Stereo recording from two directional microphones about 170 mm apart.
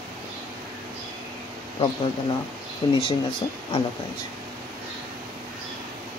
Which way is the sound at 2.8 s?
30° left (ahead or behind).